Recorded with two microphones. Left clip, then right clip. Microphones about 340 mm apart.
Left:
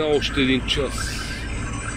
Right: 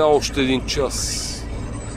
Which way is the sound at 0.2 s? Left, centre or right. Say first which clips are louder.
Even; centre.